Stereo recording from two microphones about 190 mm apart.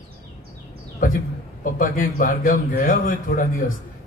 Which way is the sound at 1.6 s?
45° left (ahead or behind).